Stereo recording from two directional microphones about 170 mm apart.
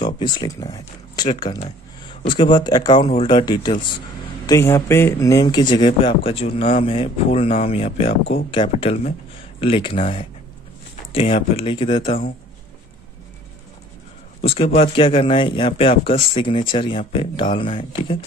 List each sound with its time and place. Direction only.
0.2 s speech: 25° left (ahead or behind)
14.4 s speech: 35° left (ahead or behind)